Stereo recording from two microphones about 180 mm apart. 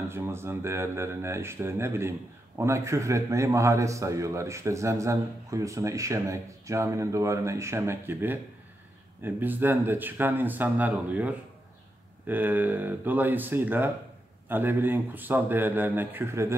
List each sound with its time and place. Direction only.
0.1 s speech: 15° right (ahead or behind)